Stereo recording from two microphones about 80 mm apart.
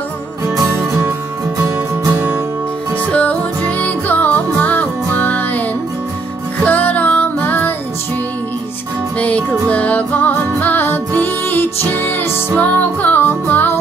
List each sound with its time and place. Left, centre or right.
3.1 s music: centre
6.6 s music: left
9.2 s music: centre